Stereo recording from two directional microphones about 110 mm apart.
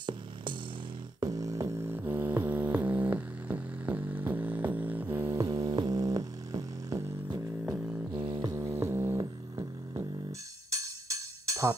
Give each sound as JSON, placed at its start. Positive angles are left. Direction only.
{"t": 1.2, "sound": "beatboxing", "side_deg": -35}
{"t": 1.9, "sound": "music", "side_deg": -20}
{"t": 5.4, "sound": "music", "side_deg": -30}
{"t": 8.1, "sound": "music", "side_deg": -45}
{"t": 8.4, "sound": "music", "side_deg": -30}
{"t": 9.2, "sound": "music", "side_deg": -35}